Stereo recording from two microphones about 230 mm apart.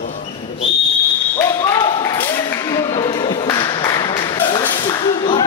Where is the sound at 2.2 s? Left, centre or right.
Centre.